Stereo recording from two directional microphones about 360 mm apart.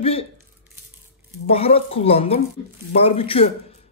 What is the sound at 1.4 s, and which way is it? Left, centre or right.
Speech, centre.